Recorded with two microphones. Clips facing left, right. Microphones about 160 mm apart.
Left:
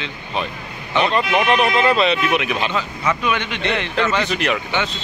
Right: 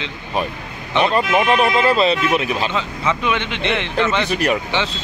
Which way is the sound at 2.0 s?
35° right (ahead or behind).